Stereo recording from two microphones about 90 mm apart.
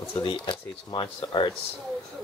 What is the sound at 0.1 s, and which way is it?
Speech, 70° left (ahead or behind).